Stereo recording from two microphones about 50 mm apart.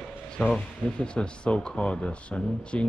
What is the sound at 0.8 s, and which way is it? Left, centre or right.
Speech, centre.